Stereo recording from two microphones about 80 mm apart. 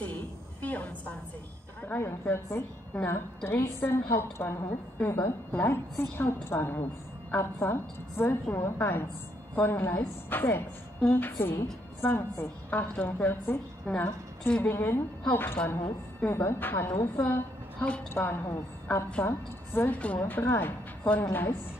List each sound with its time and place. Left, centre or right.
0.0 s a sound: left
1.9 s a woman's voice: left
17.3 s a sound: left
18.1 s a woman's voice: left
18.9 s a woman's voice: centre
19.2 s a woman's voice: left